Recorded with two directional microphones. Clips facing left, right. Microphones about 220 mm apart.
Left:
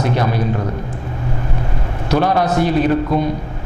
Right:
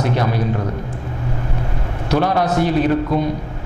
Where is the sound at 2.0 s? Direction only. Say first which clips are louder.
Left 1 dB; 15° left (ahead or behind).